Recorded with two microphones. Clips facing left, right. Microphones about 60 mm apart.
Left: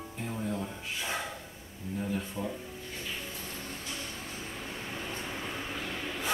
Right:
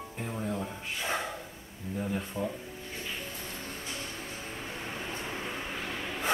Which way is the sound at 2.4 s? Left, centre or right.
Centre.